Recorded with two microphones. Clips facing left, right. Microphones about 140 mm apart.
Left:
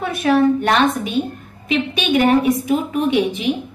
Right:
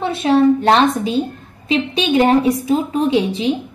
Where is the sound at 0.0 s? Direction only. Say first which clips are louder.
Right 2 dB; 25° right (ahead or behind).